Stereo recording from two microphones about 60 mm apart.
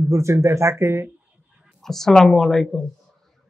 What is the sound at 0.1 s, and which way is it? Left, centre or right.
Speech, right.